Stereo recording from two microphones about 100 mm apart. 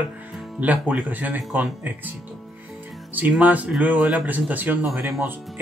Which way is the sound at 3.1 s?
15° right (ahead or behind).